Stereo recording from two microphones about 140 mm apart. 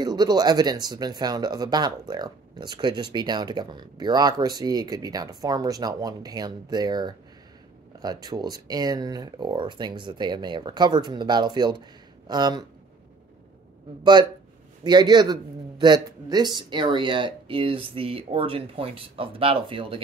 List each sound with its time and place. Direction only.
0.0 s speech: 30° right (ahead or behind)
14.8 s speech: 30° right (ahead or behind)